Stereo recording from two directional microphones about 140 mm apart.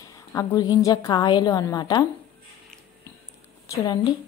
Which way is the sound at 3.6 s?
25° left (ahead or behind).